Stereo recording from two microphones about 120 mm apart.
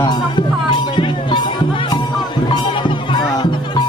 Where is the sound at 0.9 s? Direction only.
40° left (ahead or behind).